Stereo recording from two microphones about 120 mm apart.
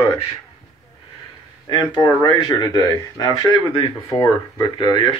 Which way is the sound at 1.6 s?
40° left (ahead or behind).